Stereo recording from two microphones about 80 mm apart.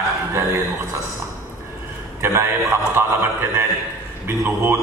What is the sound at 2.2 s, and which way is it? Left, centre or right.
Speech, right.